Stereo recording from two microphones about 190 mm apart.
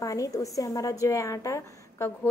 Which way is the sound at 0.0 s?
20° left (ahead or behind).